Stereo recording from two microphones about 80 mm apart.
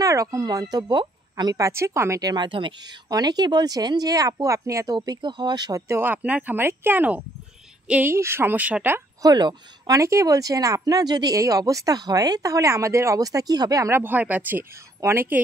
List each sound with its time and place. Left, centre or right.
0.0 s speech: right
1.3 s a woman's voice: right
1.7 s speech: right
2.2 s speech: right
3.1 s speech: right
4.9 s speech: right
5.7 s speech: right
5.9 s speech: right
8.1 s speech: right
9.2 s speech: right
9.9 s speech: right
13.8 s speech: right